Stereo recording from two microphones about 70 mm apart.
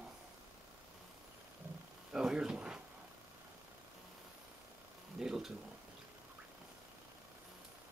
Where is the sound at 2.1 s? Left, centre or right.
Centre.